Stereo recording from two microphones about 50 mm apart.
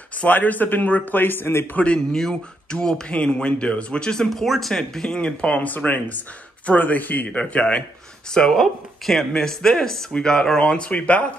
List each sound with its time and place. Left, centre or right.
0.2 s speech: left
2.7 s speech: centre
4.3 s speech: centre
8.5 s speech: centre; by 11.3 s left